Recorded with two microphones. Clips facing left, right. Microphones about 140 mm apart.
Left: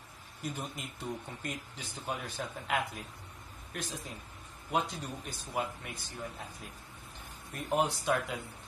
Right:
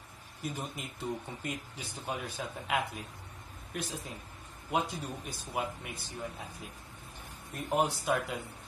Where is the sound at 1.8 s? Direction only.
40° right (ahead or behind).